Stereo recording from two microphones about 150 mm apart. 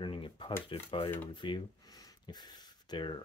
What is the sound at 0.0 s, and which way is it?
Speech, 35° left (ahead or behind).